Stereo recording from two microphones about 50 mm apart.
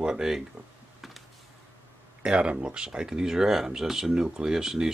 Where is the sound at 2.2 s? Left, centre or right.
Centre.